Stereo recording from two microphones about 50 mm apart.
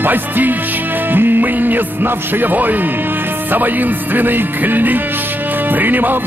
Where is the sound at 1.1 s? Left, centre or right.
Right.